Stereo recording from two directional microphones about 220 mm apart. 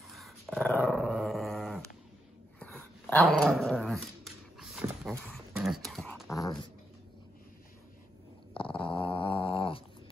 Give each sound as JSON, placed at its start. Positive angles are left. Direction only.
{"t": 0.1, "sound": "dog", "side_deg": 0}
{"t": 6.2, "sound": "dog", "side_deg": 15}
{"t": 8.5, "sound": "dog", "side_deg": 25}